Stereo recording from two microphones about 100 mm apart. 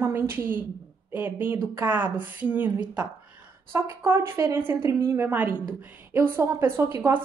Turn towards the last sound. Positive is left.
turn(degrees=-25)  # may be behind; listen again after turning